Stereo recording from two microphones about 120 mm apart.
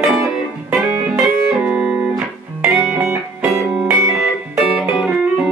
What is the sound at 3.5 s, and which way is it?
Music, 5° right (ahead or behind).